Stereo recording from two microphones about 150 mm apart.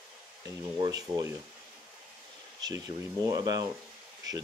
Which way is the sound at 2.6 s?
25° right (ahead or behind).